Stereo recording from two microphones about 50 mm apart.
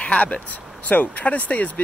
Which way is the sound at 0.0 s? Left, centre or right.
Left.